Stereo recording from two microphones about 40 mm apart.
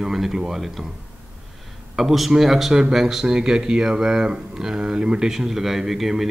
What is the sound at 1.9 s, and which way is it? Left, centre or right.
Speech, centre.